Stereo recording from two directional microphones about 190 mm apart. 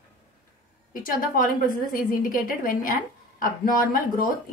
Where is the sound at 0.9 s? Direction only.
50° left (ahead or behind).